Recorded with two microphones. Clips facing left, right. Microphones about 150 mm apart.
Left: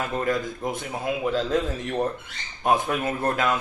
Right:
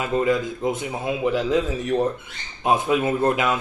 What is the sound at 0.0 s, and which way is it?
Speech, 15° right (ahead or behind).